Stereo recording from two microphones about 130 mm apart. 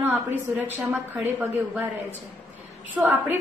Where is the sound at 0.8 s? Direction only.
5° right (ahead or behind).